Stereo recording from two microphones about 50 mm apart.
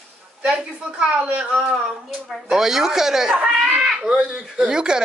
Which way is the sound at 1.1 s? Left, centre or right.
Right.